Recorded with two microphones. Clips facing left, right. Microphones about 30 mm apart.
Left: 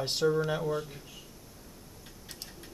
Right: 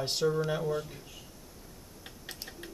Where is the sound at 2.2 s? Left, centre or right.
Right.